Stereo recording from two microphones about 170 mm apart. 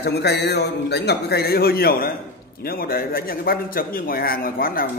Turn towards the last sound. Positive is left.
turn(degrees=60)  # may be behind; listen again after turning